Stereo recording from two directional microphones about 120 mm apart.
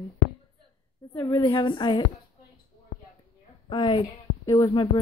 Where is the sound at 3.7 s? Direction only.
40° left (ahead or behind).